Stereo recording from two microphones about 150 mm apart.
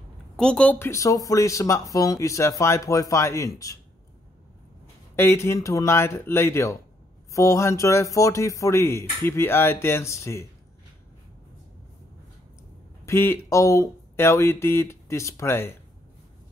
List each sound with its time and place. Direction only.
0.4 s speech: 5° left (ahead or behind); by 3.7 s 20° left (ahead or behind)
5.1 s speech: 20° left (ahead or behind)
13.0 s speech: 15° left (ahead or behind)